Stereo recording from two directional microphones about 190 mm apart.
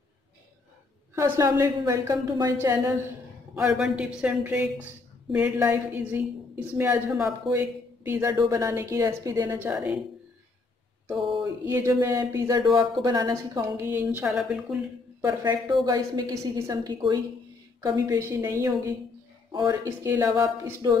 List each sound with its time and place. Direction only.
1.1 s a woman's voice: 15° right (ahead or behind)
3.5 s a woman's voice: 5° right (ahead or behind)
11.4 s a woman's voice: 15° right (ahead or behind)
15.2 s a woman's voice: 20° right (ahead or behind)